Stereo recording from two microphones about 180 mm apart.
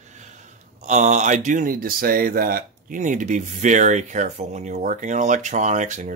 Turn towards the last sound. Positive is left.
turn(degrees=-40)  # may be behind; listen again after turning